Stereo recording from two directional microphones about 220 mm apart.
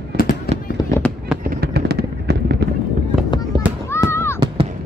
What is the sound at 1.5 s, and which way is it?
Fireworks, 45° right (ahead or behind).